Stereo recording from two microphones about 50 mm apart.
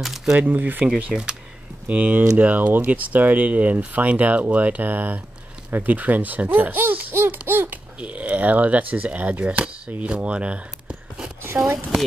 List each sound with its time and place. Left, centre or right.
0.0 s camera: centre
0.4 s speech: right
1.1 s speech: centre
1.9 s speech: right
7.4 s babbling: right
8.0 s speech: right
11.4 s speech: right